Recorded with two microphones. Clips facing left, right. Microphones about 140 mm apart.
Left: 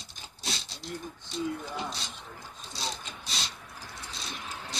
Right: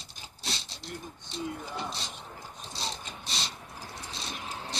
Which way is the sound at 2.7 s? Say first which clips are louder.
Left 1 dB; centre (ahead or behind).